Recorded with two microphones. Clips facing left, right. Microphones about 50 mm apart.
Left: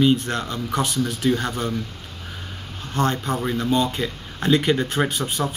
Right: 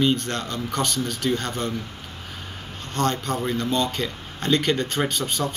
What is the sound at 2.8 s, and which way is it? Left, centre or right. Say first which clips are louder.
Speech: left 2 dB; centre.